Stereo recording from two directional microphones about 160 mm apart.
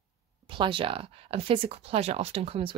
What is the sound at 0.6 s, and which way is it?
Speech, 35° right (ahead or behind).